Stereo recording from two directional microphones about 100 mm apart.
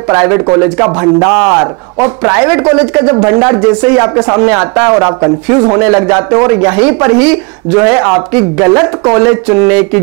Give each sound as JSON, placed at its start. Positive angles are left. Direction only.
{"t": 0.1, "sound": "a man's voice", "side_deg": -20}
{"t": 5.8, "sound": "speech", "side_deg": -15}